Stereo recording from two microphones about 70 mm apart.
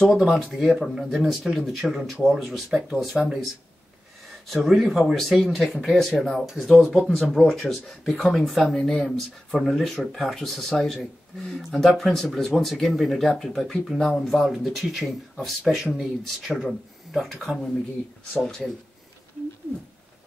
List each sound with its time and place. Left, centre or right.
0.1 s speech: centre
4.5 s speech: centre